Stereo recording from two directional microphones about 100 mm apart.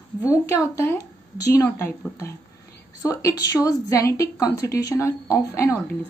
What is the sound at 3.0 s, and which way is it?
A woman's voice, 35° left (ahead or behind).